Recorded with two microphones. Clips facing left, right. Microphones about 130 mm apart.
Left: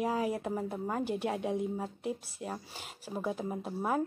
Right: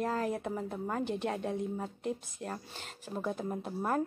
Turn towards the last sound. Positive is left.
turn(degrees=5)  # may be behind; listen again after turning